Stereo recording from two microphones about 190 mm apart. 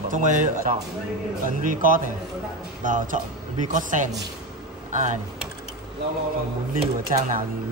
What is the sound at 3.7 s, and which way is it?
Mantra, 40° right (ahead or behind).